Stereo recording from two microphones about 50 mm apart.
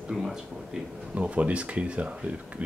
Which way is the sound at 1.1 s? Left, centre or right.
Right.